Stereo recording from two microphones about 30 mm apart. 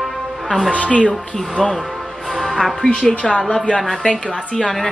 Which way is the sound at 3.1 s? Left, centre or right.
Left.